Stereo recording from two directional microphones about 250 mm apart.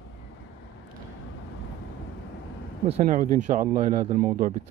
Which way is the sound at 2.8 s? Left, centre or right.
Right.